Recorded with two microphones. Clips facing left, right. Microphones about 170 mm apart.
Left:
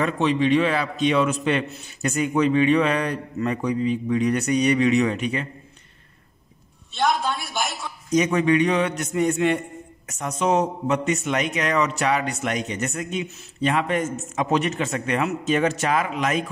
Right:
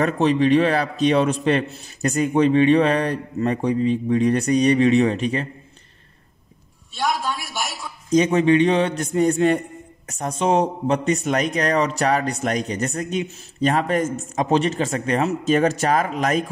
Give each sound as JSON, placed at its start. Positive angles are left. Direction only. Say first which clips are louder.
{"t": 0.0, "sound": "a man's voice", "louder": "right 3 dB", "side_deg": -40}
{"t": 7.1, "sound": "a woman's voice", "louder": "even", "side_deg": 0}
{"t": 8.1, "sound": "a man's voice", "louder": "right 3 dB", "side_deg": -30}